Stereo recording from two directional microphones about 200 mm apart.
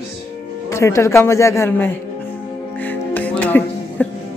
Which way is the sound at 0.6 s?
15° left (ahead or behind).